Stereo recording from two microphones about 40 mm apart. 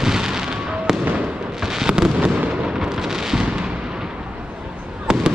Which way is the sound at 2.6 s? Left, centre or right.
Centre.